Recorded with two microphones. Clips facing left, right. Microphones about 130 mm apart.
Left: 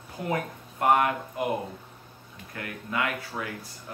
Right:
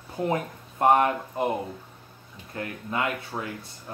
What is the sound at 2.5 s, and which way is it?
Speech, 30° right (ahead or behind).